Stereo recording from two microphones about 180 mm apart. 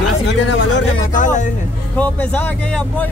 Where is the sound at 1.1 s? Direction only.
45° left (ahead or behind).